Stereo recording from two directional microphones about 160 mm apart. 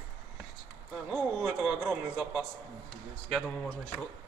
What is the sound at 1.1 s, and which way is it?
Speech, centre (ahead or behind).